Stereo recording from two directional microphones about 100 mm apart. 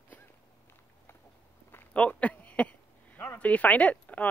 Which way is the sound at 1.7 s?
20° left (ahead or behind).